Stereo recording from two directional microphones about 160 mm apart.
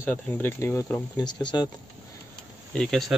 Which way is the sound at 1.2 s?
25° left (ahead or behind).